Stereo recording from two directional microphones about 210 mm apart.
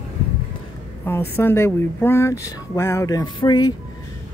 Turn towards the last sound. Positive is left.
turn(degrees=20)  # may be behind; listen again after turning